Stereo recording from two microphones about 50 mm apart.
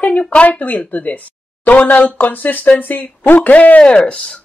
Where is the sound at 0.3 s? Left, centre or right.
Left.